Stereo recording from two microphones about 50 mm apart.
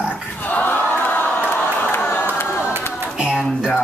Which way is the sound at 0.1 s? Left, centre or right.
Left.